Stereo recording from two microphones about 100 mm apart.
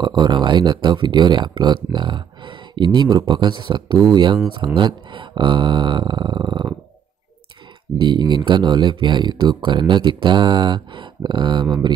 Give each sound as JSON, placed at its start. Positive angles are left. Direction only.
{"t": 0.0, "sound": "speech", "side_deg": -45}
{"t": 8.0, "sound": "speech", "side_deg": -45}